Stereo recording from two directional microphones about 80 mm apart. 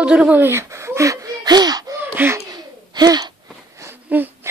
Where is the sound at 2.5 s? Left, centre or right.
Right.